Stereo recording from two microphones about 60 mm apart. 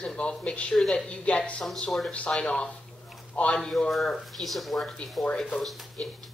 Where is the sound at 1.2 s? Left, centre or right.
Centre.